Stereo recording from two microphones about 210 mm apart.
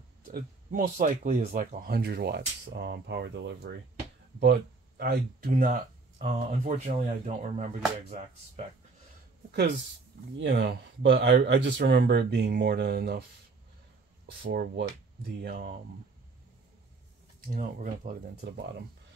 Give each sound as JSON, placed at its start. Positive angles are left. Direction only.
{"t": 0.3, "sound": "speech", "side_deg": -40}
{"t": 6.1, "sound": "speech", "side_deg": -25}
{"t": 10.3, "sound": "speech", "side_deg": -60}
{"t": 14.4, "sound": "speech", "side_deg": -45}
{"t": 17.5, "sound": "speech", "side_deg": -40}